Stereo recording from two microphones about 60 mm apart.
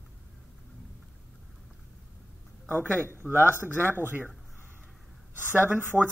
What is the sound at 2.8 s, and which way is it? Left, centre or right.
Speech, right.